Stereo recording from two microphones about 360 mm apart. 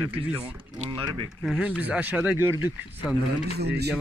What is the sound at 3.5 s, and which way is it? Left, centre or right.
Speech, right.